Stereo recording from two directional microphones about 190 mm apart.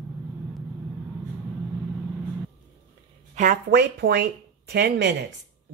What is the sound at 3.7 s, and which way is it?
Speech, 60° right (ahead or behind).